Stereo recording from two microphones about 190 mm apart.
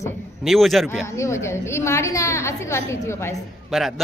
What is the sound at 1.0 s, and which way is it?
A woman's voice, 15° left (ahead or behind).